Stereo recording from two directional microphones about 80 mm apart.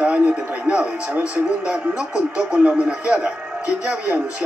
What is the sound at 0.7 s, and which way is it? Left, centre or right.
Speech, centre.